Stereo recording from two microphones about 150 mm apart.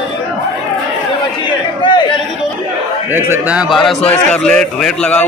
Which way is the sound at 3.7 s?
5° left (ahead or behind).